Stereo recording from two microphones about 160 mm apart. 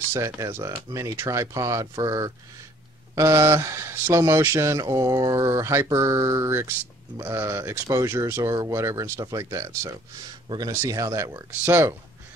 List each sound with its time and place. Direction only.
0.1 s speech: 15° right (ahead or behind)